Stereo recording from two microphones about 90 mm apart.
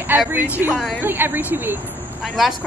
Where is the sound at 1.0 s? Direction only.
25° right (ahead or behind).